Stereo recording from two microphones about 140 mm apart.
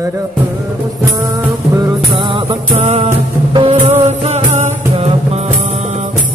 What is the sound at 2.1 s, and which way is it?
Music, 35° right (ahead or behind).